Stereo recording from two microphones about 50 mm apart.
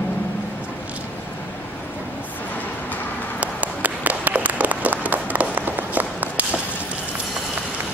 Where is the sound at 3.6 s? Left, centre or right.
Right.